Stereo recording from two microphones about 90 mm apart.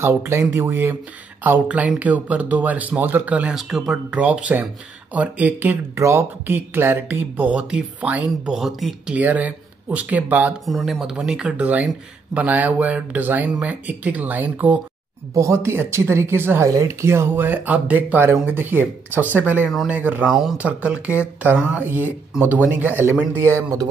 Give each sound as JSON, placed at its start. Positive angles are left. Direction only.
{"t": 0.0, "sound": "speech", "side_deg": -30}
{"t": 3.5, "sound": "speech", "side_deg": -5}
{"t": 4.1, "sound": "speech", "side_deg": -15}
{"t": 5.9, "sound": "speech", "side_deg": -30}
{"t": 8.5, "sound": "speech", "side_deg": -5}
{"t": 9.1, "sound": "speech", "side_deg": -20}
{"t": 10.6, "sound": "speech", "side_deg": 0}
{"t": 15.3, "sound": "speech", "side_deg": -30}
{"t": 20.2, "sound": "speech", "side_deg": -5}
{"t": 20.5, "sound": "speech", "side_deg": -15}